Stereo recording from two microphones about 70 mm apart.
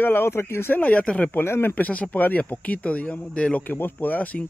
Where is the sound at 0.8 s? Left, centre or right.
Centre.